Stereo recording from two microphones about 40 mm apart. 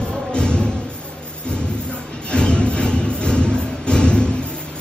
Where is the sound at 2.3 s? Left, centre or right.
Left.